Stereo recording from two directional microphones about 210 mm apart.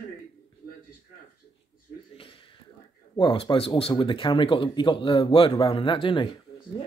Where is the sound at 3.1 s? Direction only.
25° left (ahead or behind).